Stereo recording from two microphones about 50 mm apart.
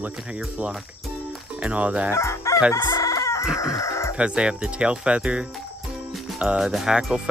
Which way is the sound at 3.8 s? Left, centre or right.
Left.